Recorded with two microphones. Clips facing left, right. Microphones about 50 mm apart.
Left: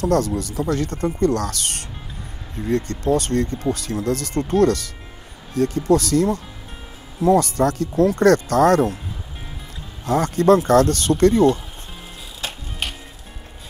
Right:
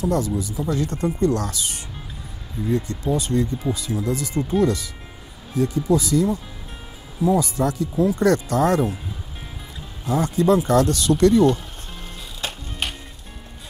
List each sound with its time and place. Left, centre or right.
0.0 s speech: left
10.0 s speech: left
12.4 s music: centre